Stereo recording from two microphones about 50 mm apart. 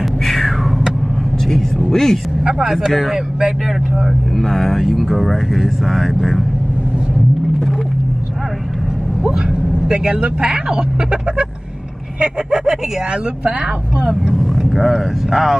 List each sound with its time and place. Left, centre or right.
0.0 s a sound: centre
1.4 s vehicle: centre
2.7 s speech: centre
4.3 s speech: centre
9.2 s speech: centre
13.5 s speech: right
14.6 s speech: centre